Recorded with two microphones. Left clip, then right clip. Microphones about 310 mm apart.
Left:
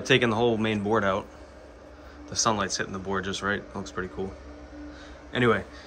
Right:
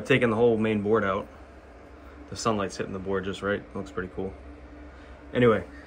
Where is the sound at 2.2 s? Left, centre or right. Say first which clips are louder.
Left 2 dB; centre.